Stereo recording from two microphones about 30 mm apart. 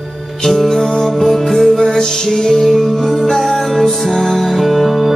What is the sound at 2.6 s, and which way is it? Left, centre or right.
Music, centre.